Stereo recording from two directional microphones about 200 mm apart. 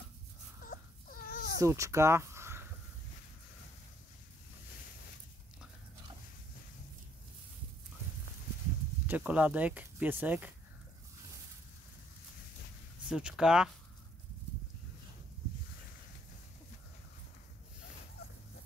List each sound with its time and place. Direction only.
0.7 s baby cry: 45° left (ahead or behind)
1.6 s speech: 15° right (ahead or behind)
9.0 s speech: 10° right (ahead or behind)
13.1 s speech: 5° right (ahead or behind)